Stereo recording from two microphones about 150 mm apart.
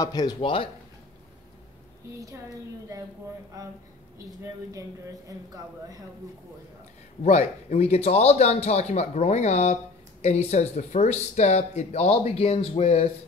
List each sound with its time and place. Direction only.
0.0 s speech: 25° left (ahead or behind)
2.1 s speech: 20° right (ahead or behind)
4.3 s speech: 25° right (ahead or behind)
7.2 s speech: 50° left (ahead or behind)